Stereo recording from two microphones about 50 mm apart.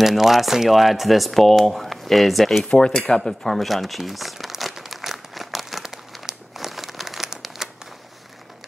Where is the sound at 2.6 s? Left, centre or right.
Centre.